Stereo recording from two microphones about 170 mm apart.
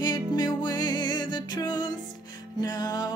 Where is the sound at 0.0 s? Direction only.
25° left (ahead or behind).